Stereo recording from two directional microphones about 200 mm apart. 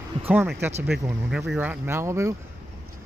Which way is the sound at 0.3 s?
10° right (ahead or behind).